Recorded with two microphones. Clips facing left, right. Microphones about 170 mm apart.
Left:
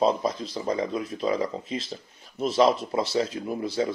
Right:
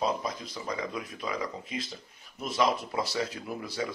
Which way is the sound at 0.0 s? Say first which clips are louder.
Left 7 dB; 30° left (ahead or behind).